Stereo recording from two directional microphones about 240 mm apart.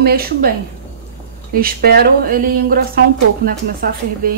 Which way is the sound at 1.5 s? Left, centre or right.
Right.